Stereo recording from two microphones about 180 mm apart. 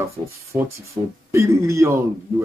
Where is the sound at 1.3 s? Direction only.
15° right (ahead or behind).